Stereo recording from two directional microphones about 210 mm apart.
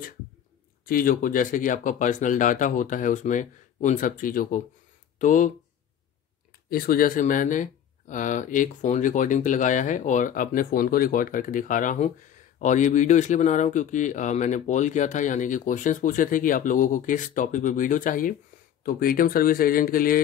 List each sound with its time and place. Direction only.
0.8 s speech: 45° left (ahead or behind)
6.7 s speech: 45° left (ahead or behind)